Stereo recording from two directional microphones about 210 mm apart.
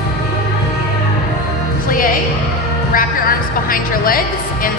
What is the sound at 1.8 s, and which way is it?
Music, 40° left (ahead or behind).